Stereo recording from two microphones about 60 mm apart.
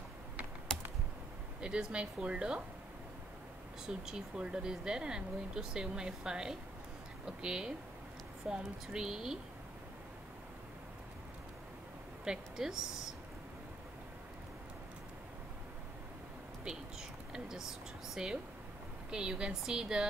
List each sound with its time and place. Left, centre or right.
0.7 s typing: centre
1.6 s speech: centre
3.8 s speech: centre
12.3 s speech: centre
17.3 s speech: centre